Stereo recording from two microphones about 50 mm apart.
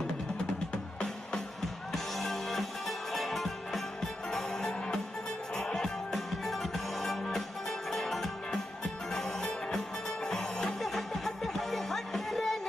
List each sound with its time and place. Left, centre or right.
1.9 s music: centre
6.1 s music: centre